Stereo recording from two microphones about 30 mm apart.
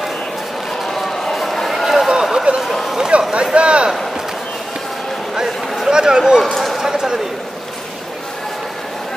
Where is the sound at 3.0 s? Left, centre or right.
Right.